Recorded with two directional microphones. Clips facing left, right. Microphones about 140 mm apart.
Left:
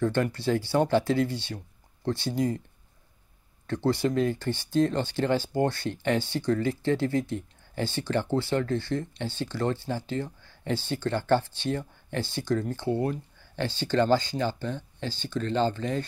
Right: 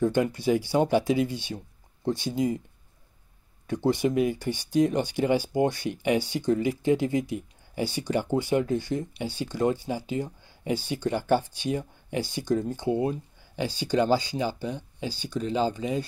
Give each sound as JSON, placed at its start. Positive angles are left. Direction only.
{"t": 0.0, "sound": "speech", "side_deg": -15}
{"t": 3.6, "sound": "speech", "side_deg": -15}